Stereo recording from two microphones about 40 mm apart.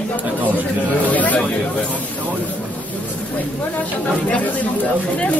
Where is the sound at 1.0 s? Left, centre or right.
Left.